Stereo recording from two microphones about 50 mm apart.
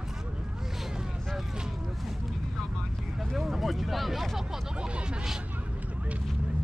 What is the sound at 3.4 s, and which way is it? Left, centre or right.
Speech, centre.